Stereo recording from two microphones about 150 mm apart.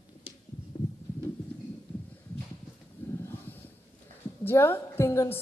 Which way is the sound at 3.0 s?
15° left (ahead or behind).